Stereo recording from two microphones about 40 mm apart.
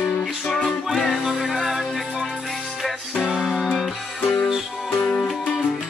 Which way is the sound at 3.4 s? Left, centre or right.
Centre.